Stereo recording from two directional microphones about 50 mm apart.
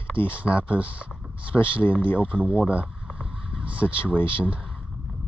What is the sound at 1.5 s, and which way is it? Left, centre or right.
Speech, left.